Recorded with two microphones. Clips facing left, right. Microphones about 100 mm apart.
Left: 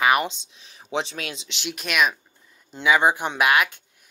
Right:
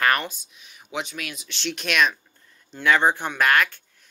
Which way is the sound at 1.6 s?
5° left (ahead or behind).